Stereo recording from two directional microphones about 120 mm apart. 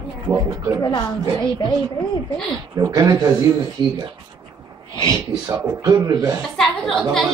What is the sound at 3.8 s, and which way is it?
Speech, 40° right (ahead or behind).